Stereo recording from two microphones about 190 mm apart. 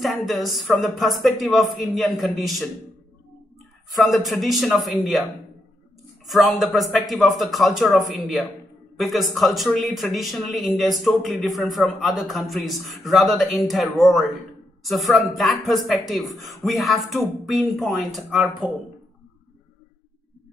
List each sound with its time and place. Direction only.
0.0 s speech: centre (ahead or behind)
4.0 s speech: centre (ahead or behind)
6.2 s speech: centre (ahead or behind)